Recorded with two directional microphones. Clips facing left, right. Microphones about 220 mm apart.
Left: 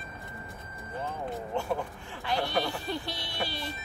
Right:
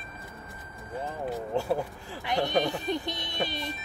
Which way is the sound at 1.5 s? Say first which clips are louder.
Right 4 dB; 35° right (ahead or behind).